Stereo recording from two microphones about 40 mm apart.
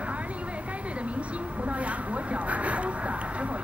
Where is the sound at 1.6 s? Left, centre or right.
Right.